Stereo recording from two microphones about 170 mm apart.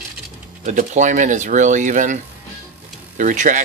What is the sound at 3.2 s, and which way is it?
Speech, 50° right (ahead or behind).